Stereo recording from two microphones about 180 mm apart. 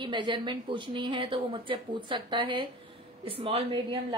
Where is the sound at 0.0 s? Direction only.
25° right (ahead or behind).